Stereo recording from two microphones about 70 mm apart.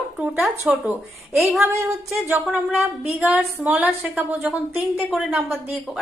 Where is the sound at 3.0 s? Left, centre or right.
Right.